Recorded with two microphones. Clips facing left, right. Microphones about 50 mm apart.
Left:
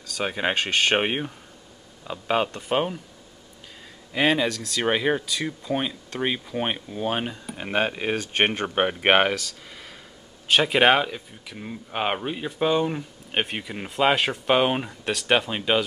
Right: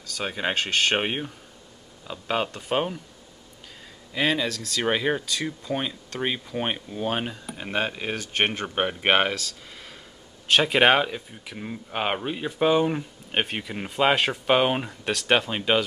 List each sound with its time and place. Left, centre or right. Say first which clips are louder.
0.2 s speech: left 2 dB; centre
4.1 s speech: left 3 dB; centre
10.5 s speech: even; centre